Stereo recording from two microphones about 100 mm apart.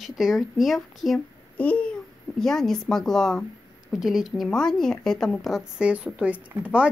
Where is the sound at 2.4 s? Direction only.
5° left (ahead or behind).